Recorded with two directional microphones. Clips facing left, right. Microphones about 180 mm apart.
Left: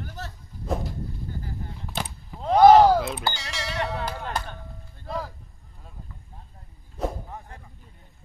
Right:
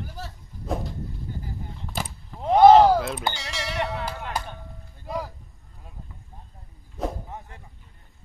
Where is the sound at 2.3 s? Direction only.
20° right (ahead or behind).